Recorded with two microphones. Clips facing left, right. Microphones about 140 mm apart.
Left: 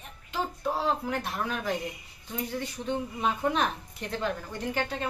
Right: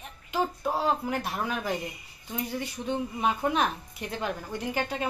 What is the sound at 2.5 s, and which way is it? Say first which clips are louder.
A woman's voice: right 1 dB; 10° right (ahead or behind).